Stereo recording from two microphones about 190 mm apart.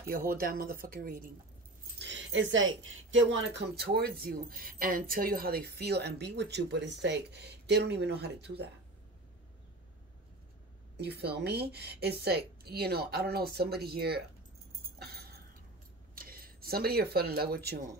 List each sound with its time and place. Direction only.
0.3 s speech: 50° right (ahead or behind)
2.0 s speech: 70° right (ahead or behind)
11.0 s speech: 60° right (ahead or behind)
15.0 s a sound: 55° right (ahead or behind)
16.2 s speech: 50° right (ahead or behind)